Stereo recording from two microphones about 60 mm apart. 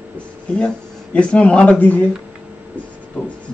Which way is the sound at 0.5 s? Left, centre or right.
Centre.